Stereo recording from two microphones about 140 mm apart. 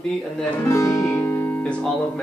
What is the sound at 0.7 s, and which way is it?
Speech, 20° left (ahead or behind).